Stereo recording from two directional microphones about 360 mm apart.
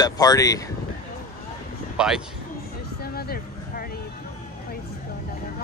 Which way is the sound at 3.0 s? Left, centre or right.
Left.